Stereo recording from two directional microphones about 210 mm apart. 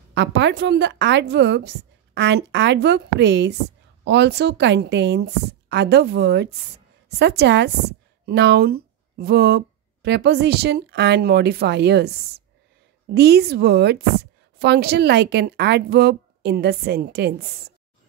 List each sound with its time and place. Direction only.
0.1 s a woman's voice: 55° right (ahead or behind)